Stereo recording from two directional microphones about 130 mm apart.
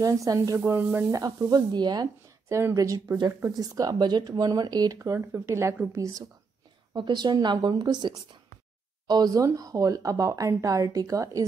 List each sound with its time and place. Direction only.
0.0 s speech: 25° right (ahead or behind)
4.9 s speech: 20° right (ahead or behind)
6.9 s speech: 35° right (ahead or behind)